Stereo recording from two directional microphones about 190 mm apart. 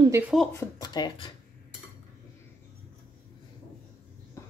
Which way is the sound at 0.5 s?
20° left (ahead or behind).